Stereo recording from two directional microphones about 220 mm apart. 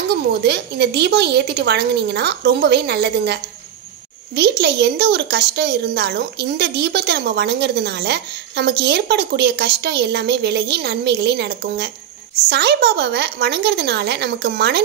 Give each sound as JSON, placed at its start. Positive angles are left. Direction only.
{"t": 0.1, "sound": "a woman's voice", "side_deg": -50}
{"t": 4.4, "sound": "a woman's voice", "side_deg": -50}